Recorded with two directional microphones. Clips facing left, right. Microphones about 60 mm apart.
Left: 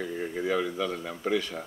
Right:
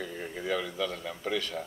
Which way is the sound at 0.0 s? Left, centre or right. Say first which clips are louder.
Left 5 dB; centre.